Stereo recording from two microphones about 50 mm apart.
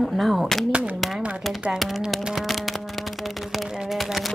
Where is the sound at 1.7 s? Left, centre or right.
Centre.